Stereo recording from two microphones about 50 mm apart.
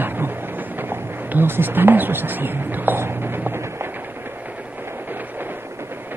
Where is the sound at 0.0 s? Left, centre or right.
Right.